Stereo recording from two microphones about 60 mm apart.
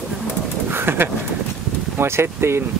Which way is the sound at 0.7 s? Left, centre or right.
Right.